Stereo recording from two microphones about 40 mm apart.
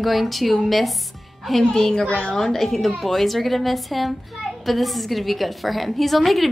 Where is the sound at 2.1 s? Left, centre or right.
Left.